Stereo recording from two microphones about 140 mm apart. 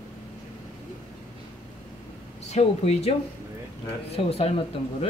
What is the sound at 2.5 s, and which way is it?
Speech, 50° left (ahead or behind).